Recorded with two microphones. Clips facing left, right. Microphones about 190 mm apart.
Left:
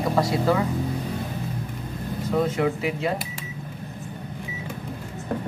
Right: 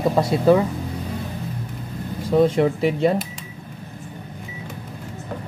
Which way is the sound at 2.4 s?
35° right (ahead or behind).